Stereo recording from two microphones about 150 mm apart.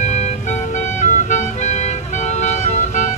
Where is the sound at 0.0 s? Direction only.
50° left (ahead or behind).